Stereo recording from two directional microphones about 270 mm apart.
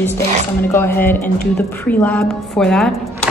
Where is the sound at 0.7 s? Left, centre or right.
Centre.